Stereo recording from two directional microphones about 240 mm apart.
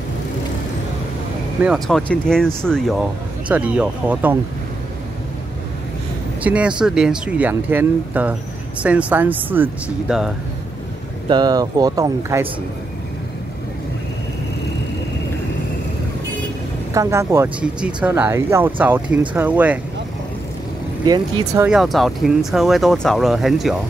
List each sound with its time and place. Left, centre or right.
1.6 s speech: centre
6.4 s speech: centre
11.2 s speech: centre
16.9 s speech: centre
21.0 s speech: centre
21.6 s speech: centre